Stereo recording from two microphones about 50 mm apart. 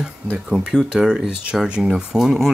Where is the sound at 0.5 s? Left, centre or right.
Centre.